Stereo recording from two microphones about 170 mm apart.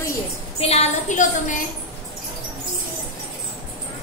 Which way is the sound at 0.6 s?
40° left (ahead or behind).